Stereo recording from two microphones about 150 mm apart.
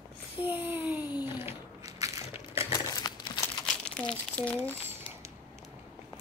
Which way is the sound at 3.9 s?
5° left (ahead or behind).